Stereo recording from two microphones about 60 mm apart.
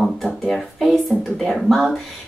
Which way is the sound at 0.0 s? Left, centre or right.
Centre.